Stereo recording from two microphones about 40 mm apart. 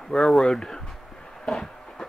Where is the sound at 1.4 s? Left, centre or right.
Centre.